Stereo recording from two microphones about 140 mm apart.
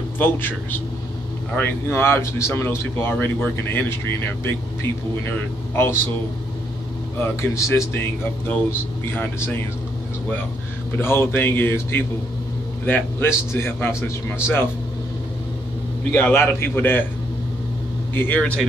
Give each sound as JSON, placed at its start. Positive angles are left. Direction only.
{"t": 0.2, "sound": "speech", "side_deg": 15}
{"t": 7.2, "sound": "speech", "side_deg": 20}
{"t": 11.0, "sound": "speech", "side_deg": 15}
{"t": 16.1, "sound": "speech", "side_deg": 15}
{"t": 18.1, "sound": "speech", "side_deg": 15}